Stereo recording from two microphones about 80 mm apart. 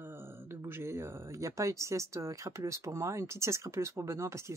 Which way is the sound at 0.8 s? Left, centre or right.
Right.